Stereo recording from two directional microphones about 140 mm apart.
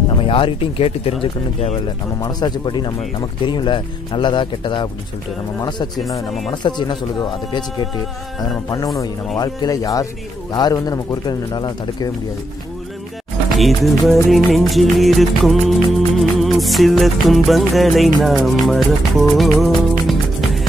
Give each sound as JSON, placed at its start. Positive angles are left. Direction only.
{"t": 0.2, "sound": "speech", "side_deg": 40}
{"t": 2.2, "sound": "speech", "side_deg": 30}
{"t": 13.6, "sound": "music", "side_deg": 0}